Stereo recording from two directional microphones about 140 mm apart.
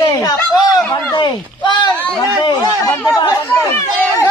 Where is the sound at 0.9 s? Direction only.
35° left (ahead or behind).